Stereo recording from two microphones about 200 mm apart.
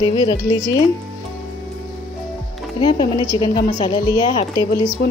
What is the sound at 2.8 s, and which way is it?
A woman's voice, 20° left (ahead or behind).